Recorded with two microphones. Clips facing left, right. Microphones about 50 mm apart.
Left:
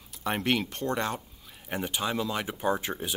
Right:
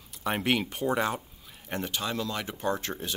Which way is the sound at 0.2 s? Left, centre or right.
Centre.